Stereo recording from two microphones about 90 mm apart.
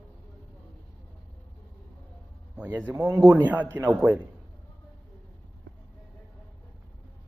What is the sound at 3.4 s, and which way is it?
Speech, 20° right (ahead or behind).